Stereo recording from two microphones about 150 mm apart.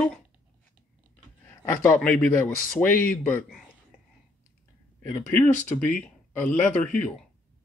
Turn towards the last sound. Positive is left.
turn(degrees=10)  # may be behind; listen again after turning